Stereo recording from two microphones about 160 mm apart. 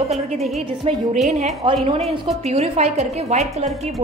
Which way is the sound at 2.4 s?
40° right (ahead or behind).